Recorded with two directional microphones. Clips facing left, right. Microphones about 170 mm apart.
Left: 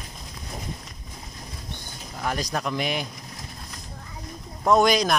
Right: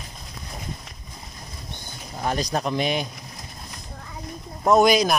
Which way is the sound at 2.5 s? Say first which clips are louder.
Right 3 dB; 25° right (ahead or behind).